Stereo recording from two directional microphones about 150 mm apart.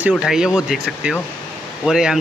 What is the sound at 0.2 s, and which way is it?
A man's voice, 5° right (ahead or behind).